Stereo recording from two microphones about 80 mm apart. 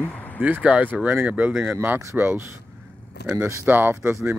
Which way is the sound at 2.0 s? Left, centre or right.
Right.